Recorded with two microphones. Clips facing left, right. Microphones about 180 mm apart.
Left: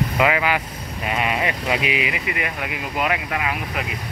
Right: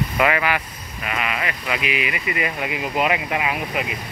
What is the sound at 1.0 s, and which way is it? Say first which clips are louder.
Speech: left 3 dB; 30° left (ahead or behind).